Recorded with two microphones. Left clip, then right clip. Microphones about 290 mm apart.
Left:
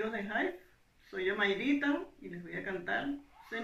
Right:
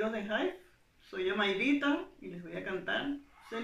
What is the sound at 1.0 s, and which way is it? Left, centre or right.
Speech, centre.